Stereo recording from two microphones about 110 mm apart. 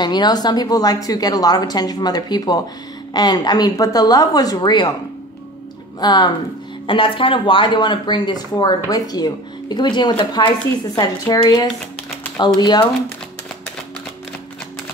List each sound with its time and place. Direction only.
0.0 s a woman's voice: 40° left (ahead or behind)
5.9 s a woman's voice: 40° left (ahead or behind)
6.9 s a woman's voice: 50° left (ahead or behind)